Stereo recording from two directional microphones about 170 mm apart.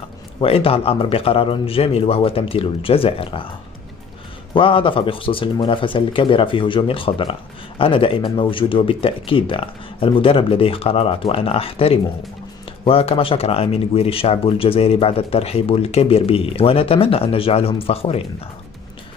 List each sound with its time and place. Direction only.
0.4 s speech: 35° left (ahead or behind)
4.6 s speech: 30° left (ahead or behind)